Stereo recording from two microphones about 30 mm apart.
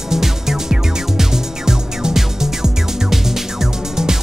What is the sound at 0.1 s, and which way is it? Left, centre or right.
Music, centre.